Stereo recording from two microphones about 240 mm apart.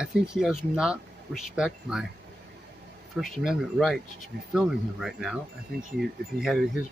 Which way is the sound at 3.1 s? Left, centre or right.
Centre.